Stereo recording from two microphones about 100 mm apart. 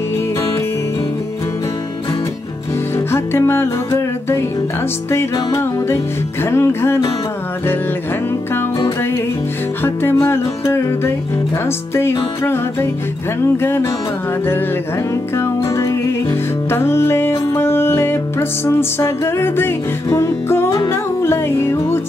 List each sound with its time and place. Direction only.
3.1 s music: 25° left (ahead or behind)
9.8 s music: 25° left (ahead or behind)
13.6 s music: 25° left (ahead or behind)
15.3 s music: 30° left (ahead or behind)